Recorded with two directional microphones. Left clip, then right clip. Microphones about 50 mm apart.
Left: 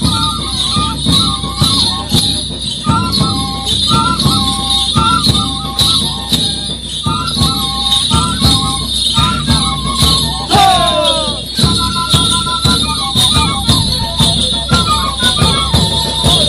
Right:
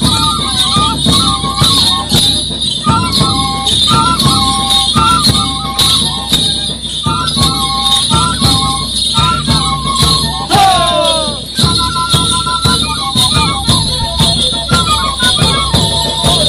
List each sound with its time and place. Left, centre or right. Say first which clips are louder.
0.0 s music: right 3 dB; right
3.9 s music: right 2 dB; right
7.3 s jingle bell: right 2 dB; right
9.1 s music: right 4 dB; centre
10.8 s jingle bell: right 1 dB; centre
14.2 s music: right 1 dB; centre